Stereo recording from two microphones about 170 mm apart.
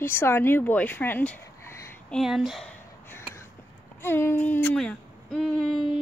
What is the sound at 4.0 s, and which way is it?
Speech, 15° left (ahead or behind).